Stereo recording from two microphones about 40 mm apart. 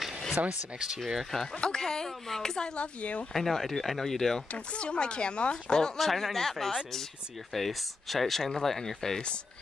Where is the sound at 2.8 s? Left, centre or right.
Left.